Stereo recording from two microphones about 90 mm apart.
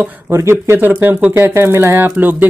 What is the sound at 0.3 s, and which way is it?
Speech, 30° right (ahead or behind).